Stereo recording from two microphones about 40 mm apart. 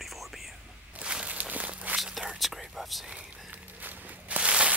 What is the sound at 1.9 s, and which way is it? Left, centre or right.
Whispering, centre.